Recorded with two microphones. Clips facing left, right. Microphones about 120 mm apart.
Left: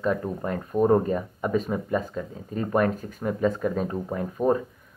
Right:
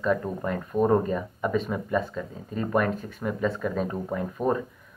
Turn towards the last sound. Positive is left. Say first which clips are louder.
# left 2 dB
turn(degrees=30)  # may be behind; listen again after turning